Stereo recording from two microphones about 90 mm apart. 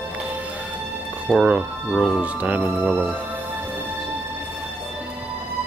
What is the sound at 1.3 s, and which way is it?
Speech, 15° right (ahead or behind).